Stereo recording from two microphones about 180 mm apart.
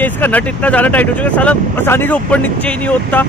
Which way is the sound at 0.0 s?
10° left (ahead or behind).